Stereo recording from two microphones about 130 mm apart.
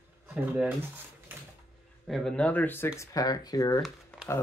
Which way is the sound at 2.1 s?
5° left (ahead or behind).